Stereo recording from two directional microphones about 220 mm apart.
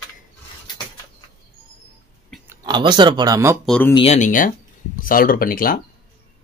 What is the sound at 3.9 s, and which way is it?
Speech, 25° left (ahead or behind).